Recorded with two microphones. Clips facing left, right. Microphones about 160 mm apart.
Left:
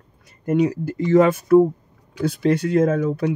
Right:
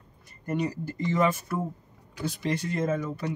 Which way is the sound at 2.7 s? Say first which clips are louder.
Left 10 dB; 65° left (ahead or behind).